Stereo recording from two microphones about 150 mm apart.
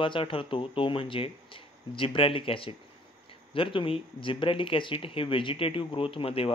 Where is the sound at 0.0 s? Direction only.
35° left (ahead or behind).